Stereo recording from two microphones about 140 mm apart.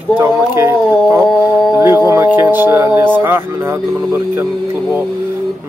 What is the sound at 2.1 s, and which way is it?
Speech, 15° right (ahead or behind).